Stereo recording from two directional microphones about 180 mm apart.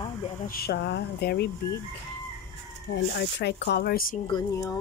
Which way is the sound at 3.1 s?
70° left (ahead or behind).